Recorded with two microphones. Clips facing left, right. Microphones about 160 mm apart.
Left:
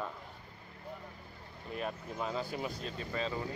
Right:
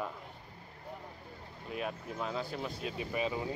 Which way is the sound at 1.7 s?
5° right (ahead or behind).